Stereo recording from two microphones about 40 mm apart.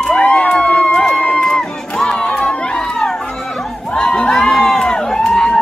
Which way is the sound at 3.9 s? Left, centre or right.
Left.